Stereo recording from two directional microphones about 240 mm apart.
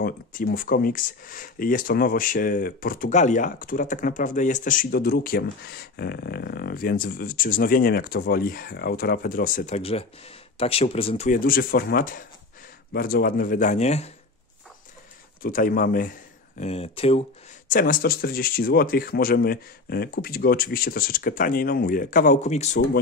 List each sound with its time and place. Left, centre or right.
0.0 s speech: left
15.4 s speech: left
17.6 s speech: left